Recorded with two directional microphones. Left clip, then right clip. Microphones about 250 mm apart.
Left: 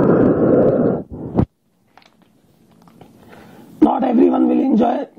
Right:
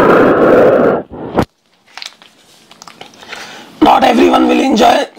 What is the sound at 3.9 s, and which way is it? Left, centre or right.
Music, centre.